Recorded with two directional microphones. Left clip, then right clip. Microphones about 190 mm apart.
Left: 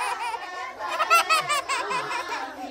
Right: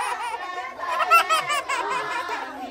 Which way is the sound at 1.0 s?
10° left (ahead or behind).